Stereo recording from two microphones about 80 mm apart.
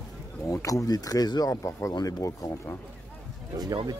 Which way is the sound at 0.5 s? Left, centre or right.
Left.